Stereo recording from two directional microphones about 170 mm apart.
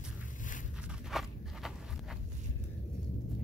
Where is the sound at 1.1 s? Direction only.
Centre (ahead or behind).